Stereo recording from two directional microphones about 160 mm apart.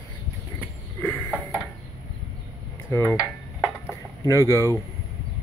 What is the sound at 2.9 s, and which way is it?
Speech, 15° left (ahead or behind).